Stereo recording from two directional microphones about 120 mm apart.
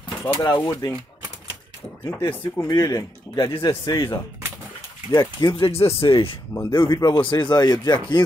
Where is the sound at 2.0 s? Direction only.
20° left (ahead or behind).